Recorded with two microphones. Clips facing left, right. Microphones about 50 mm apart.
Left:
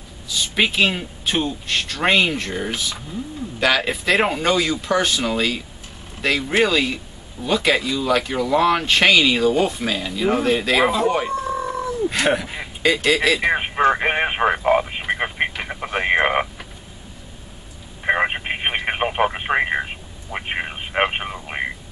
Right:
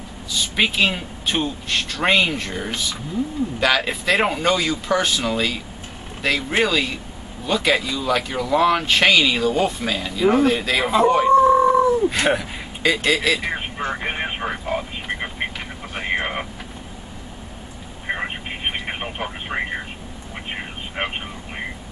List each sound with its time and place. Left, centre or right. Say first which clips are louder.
0.3 s speech: left 1 dB; centre
11.3 s a sound: right 11 dB; right
12.1 s speech: even; centre
13.5 s speech: left 8 dB; left
15.7 s vehicle: left 7 dB; left
18.0 s telephone: left 7 dB; left
20.3 s a sound: left 5 dB; left